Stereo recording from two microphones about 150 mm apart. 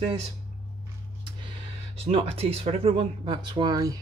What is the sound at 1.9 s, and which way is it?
Speech, 40° right (ahead or behind).